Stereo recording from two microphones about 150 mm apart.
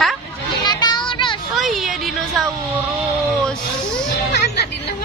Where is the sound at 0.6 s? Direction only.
30° left (ahead or behind).